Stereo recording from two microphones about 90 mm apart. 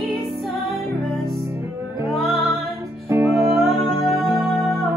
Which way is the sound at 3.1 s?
25° right (ahead or behind).